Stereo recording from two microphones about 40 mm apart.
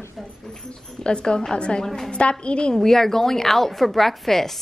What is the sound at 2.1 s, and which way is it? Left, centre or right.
Speech, left.